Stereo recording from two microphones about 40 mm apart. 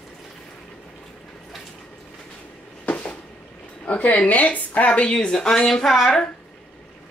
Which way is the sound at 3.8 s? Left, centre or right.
Left.